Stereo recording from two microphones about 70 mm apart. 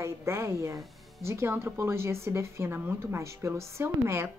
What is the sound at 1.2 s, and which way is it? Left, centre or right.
Speech, right.